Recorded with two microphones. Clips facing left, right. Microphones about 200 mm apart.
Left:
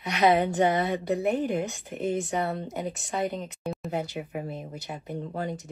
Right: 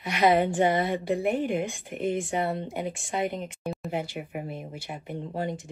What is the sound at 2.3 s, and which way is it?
Speech, 30° right (ahead or behind).